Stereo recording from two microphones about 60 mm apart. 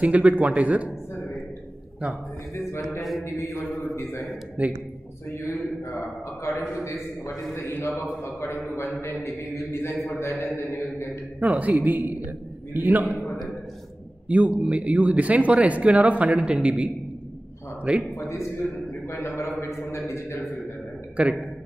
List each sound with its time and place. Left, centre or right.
0.0 s speech: right
3.0 s a man's voice: centre
3.3 s a man's voice: left
4.6 s speech: right
5.5 s a man's voice: left
8.2 s a man's voice: left
10.6 s mantra: left
11.3 s speech: right
14.3 s speech: right
19.0 s a man's voice: left
19.7 s a sound: left
21.2 s speech: centre